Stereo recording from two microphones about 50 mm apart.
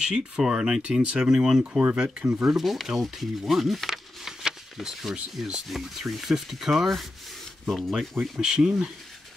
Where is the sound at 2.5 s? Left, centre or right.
Centre.